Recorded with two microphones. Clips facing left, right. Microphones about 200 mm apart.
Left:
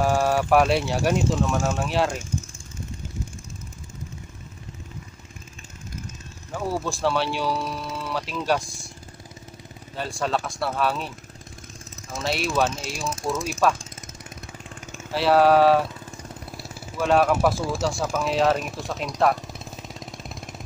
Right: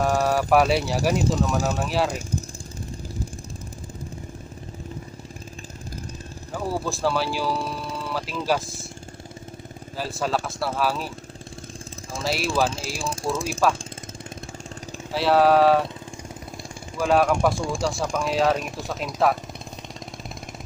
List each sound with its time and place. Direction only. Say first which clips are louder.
0.0 s speech: even; centre (ahead or behind)
6.5 s speech: even; centre (ahead or behind)
9.9 s speech: even; centre (ahead or behind)
12.2 s speech: even; centre (ahead or behind)
12.6 s speech: even; 30° right (ahead or behind)
15.0 s speech: left 1 dB; centre (ahead or behind)
16.9 s speech: even; centre (ahead or behind)